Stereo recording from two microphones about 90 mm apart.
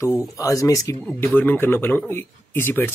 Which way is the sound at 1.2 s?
20° left (ahead or behind).